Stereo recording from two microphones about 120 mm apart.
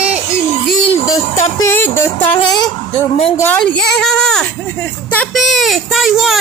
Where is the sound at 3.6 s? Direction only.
5° left (ahead or behind).